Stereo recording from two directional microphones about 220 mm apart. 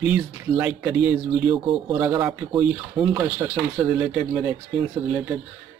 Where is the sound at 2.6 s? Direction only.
5° right (ahead or behind).